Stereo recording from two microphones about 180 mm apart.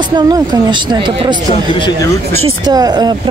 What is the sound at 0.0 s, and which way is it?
Speech, 25° right (ahead or behind).